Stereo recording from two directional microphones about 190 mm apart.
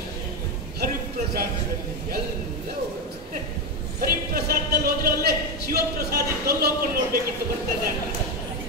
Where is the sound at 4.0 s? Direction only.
55° right (ahead or behind).